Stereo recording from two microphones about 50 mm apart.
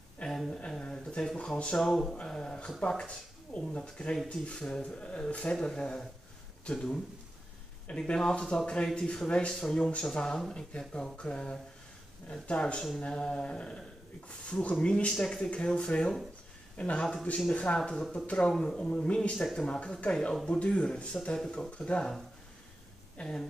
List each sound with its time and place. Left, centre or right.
0.3 s a sound: centre
1.2 s speech: centre
2.1 s a sound: centre
2.9 s speech: centre
19.3 s speech: centre
19.6 s speech: left
23.2 s speech: left